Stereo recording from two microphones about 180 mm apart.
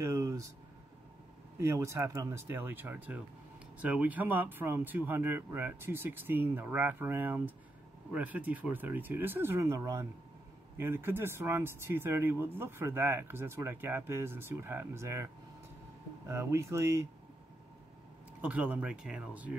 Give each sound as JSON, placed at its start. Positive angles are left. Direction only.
{"t": 0.0, "sound": "a sound", "side_deg": -20}
{"t": 1.6, "sound": "speech", "side_deg": -15}
{"t": 16.3, "sound": "speech", "side_deg": -15}
{"t": 18.4, "sound": "speech", "side_deg": -10}